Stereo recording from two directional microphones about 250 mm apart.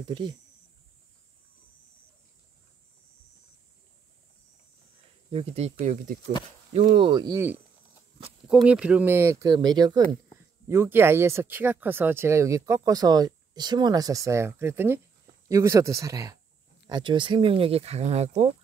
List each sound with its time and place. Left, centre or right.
0.0 s speech: centre
5.3 s speech: right